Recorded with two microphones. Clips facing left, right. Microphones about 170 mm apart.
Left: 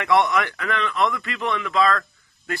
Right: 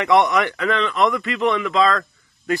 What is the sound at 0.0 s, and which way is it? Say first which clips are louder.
A man's voice: right 3 dB; 20° right (ahead or behind).